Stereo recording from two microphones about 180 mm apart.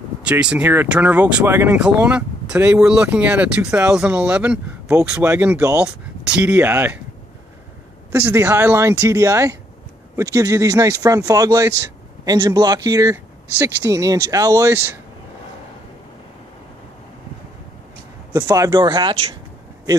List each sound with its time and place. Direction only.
0.2 s speech: 5° right (ahead or behind)
8.1 s speech: 15° right (ahead or behind)
18.3 s speech: 20° right (ahead or behind)